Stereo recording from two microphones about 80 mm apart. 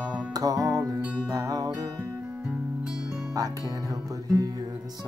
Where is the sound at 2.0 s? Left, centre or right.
Centre.